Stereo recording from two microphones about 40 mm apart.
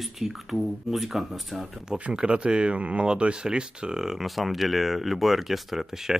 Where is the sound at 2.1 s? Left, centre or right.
Right.